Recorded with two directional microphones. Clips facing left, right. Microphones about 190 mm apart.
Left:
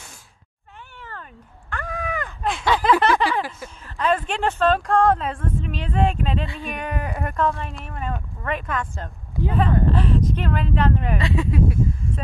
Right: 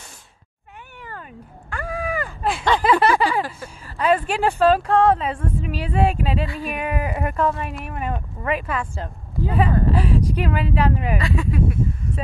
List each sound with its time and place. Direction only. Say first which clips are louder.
1.7 s a sound: right 2 dB; 10° right (ahead or behind)
3.6 s speech: right 4 dB; 10° right (ahead or behind)
11.1 s speech: even; 25° left (ahead or behind)